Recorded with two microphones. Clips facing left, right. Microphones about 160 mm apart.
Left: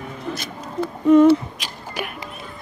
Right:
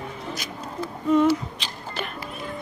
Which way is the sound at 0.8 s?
55° left (ahead or behind).